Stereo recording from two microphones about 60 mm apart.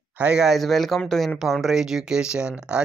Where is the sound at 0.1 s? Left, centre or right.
Right.